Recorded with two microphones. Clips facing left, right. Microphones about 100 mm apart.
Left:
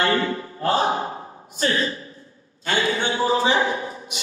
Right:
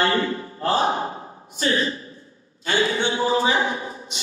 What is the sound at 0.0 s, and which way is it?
Mantra, 35° right (ahead or behind).